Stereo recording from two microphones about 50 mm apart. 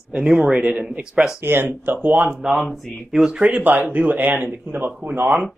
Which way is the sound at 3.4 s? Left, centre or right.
Right.